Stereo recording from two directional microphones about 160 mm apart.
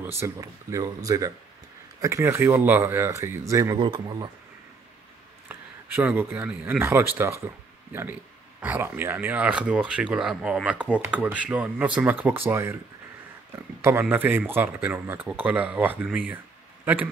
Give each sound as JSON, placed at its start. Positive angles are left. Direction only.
{"t": 0.0, "sound": "speech", "side_deg": -15}
{"t": 5.5, "sound": "speech", "side_deg": -10}
{"t": 13.8, "sound": "a man's voice", "side_deg": -15}